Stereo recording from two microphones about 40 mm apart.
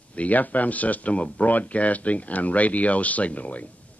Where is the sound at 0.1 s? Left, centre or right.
Left.